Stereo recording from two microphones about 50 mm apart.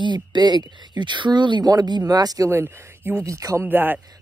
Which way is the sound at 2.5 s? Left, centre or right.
Right.